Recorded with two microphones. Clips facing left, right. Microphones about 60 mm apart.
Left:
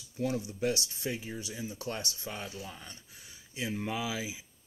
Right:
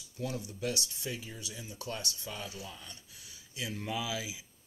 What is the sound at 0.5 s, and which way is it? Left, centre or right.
Speech, left.